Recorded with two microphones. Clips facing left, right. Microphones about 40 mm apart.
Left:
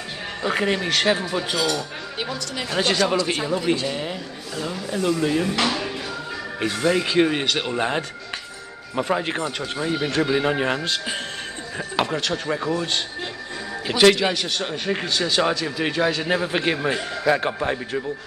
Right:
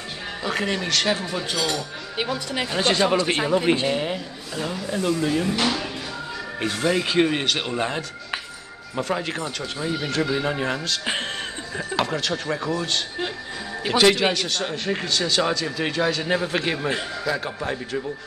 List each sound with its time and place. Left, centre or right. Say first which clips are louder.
0.4 s speech: left 3 dB; centre
2.1 s speech: right 4 dB; centre
2.7 s speech: left 1 dB; centre
3.2 s speech: right 2 dB; right
3.9 s a man's voice: right 3 dB; centre
4.6 s speech: left 1 dB; centre
5.2 s speech: left 1 dB; centre
6.6 s speech: left 2 dB; centre
8.9 s speech: left 3 dB; centre
9.9 s speech: left 3 dB; left
11.7 s speech: left 1 dB; centre
14.3 s speech: even; centre
17.2 s a man's voice: left 6 dB; left
17.6 s speech: left 3 dB; centre